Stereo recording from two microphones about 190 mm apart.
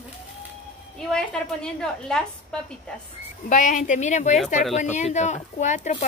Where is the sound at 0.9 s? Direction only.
5° left (ahead or behind).